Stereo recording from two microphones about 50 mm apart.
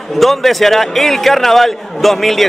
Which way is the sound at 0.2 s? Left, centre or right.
Centre.